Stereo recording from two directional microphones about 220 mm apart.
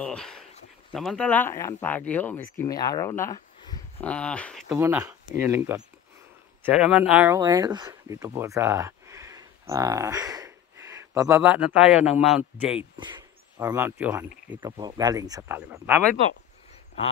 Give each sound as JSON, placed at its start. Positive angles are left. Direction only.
{"t": 0.0, "sound": "speech", "side_deg": 5}
{"t": 4.7, "sound": "speech", "side_deg": -10}
{"t": 12.9, "sound": "speech", "side_deg": -20}
{"t": 14.6, "sound": "speech", "side_deg": -20}